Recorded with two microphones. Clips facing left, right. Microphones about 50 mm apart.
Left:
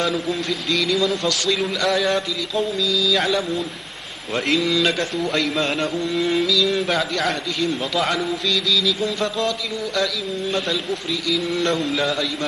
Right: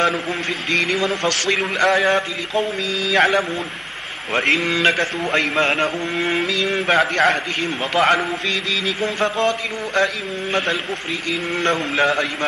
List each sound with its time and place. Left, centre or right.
0.7 s a man's voice: right